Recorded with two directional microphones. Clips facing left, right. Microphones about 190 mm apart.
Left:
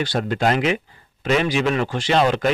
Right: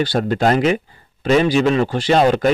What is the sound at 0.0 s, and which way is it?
Speech, 35° right (ahead or behind).